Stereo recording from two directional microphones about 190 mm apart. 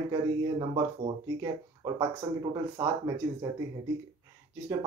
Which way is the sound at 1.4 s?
20° right (ahead or behind).